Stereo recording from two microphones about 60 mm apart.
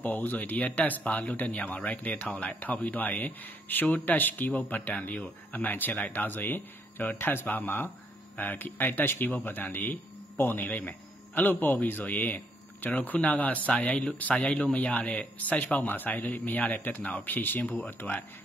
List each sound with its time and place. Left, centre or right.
0.0 s a man's voice: left